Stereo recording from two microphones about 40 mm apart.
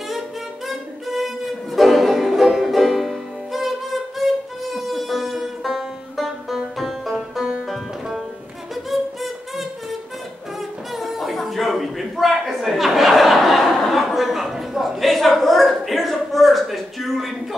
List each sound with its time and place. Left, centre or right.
0.7 s music: centre
8.9 s music: centre
11.0 s a sound: centre